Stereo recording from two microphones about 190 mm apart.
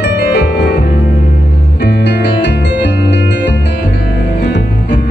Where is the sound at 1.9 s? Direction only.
60° left (ahead or behind).